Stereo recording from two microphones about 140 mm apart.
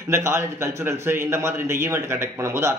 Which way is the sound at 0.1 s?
20° right (ahead or behind).